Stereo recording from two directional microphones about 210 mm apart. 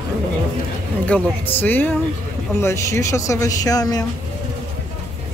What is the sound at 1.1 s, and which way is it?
Speech, 10° left (ahead or behind).